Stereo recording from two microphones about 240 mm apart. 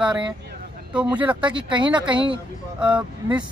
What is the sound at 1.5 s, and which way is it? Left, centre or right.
Speech, centre.